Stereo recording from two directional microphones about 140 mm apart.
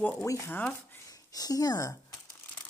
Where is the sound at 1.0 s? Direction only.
25° left (ahead or behind).